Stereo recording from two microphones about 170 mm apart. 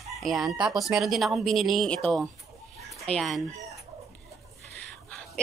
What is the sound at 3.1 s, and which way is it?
Speech, centre (ahead or behind).